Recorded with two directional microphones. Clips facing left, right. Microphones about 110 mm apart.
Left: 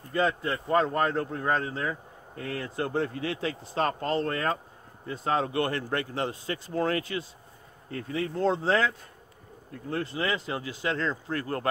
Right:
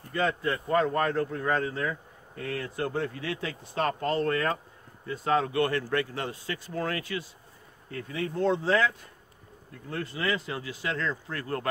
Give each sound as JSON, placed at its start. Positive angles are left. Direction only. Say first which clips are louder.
{"t": 0.1, "sound": "speech", "louder": "left 1 dB", "side_deg": 25}